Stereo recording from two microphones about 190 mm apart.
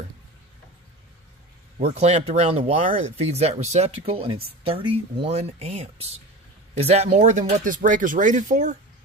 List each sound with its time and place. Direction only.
2.0 s speech: 35° right (ahead or behind)